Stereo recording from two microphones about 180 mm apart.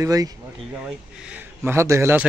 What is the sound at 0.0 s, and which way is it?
Speech, 20° right (ahead or behind).